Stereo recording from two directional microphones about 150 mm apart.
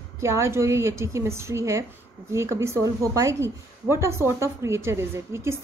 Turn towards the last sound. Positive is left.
turn(degrees=-20)  # may be behind; listen again after turning